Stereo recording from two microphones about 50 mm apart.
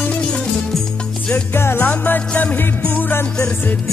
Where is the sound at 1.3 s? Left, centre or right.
Left.